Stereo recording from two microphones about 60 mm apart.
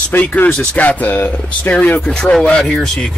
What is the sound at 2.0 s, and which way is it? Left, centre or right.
Speech, centre.